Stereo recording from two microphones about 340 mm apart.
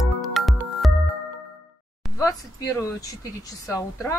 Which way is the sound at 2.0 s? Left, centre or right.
Centre.